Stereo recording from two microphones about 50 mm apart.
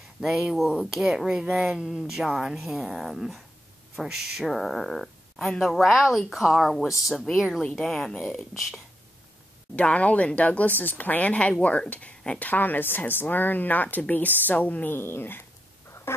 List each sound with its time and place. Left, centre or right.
0.2 s speech: centre
7.7 s speech: centre
8.2 s speech: centre
9.8 s speech: left
12.4 s speech: left
15.0 s dog: left
16.1 s a sound: left